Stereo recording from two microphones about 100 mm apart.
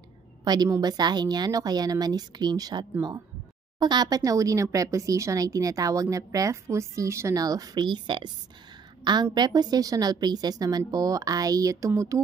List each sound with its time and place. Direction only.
0.4 s a woman's voice: 45° right (ahead or behind)